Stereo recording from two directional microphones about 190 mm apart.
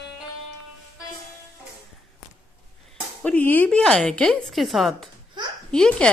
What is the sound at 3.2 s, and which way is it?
A woman's voice, 10° left (ahead or behind).